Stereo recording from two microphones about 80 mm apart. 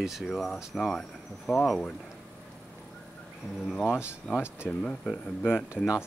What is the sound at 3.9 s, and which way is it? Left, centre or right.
Speech, left.